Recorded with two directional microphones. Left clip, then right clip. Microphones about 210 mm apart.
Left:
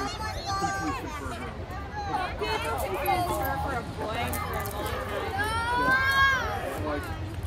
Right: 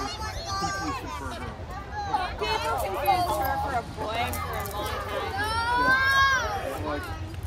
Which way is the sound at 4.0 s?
20° right (ahead or behind).